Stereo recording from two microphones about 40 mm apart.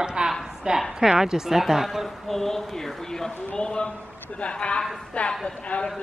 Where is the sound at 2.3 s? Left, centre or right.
Centre; by 5.9 s left.